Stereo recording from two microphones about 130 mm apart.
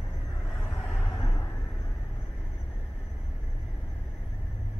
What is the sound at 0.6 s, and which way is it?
Vehicle, 15° left (ahead or behind).